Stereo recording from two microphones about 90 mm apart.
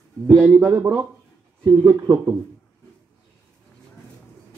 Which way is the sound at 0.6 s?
35° right (ahead or behind).